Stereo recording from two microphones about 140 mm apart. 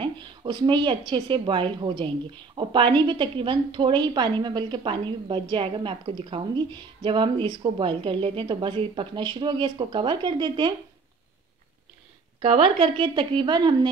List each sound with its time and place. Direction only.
0.0 s a woman's voice: 35° right (ahead or behind)
12.4 s a woman's voice: 40° right (ahead or behind)